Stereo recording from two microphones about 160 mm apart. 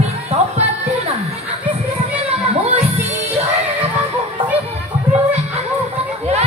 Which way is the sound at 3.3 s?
40° right (ahead or behind).